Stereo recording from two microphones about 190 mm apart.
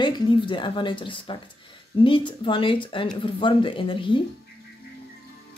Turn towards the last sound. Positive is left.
turn(degrees=25)  # may be behind; listen again after turning